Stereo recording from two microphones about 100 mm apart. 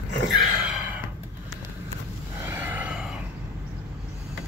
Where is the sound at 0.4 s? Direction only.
10° right (ahead or behind).